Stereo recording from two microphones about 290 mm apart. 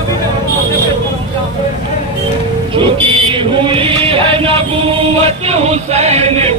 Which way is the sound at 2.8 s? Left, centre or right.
Centre.